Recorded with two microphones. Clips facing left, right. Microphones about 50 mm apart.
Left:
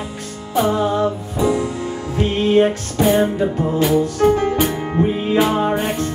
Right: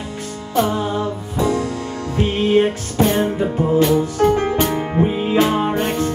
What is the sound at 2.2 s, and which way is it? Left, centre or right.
Music, centre.